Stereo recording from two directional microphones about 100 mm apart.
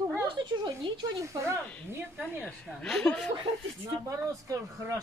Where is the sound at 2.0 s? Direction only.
15° right (ahead or behind).